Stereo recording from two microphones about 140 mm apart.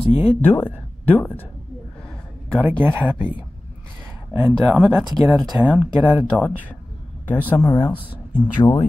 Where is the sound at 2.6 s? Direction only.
10° right (ahead or behind).